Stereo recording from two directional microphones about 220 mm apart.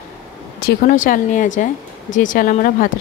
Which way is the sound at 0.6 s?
40° left (ahead or behind).